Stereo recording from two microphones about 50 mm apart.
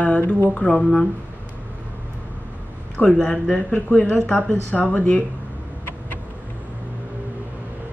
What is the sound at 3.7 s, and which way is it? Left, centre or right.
Speech, left.